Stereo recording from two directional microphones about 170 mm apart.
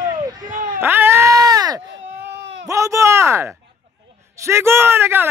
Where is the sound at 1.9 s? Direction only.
90° right.